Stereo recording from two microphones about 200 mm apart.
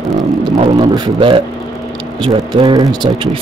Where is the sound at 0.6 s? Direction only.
20° right (ahead or behind).